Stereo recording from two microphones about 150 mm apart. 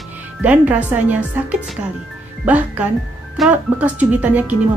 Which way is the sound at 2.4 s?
10° right (ahead or behind).